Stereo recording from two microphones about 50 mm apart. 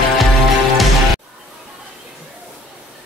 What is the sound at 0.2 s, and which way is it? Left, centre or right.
Music, centre.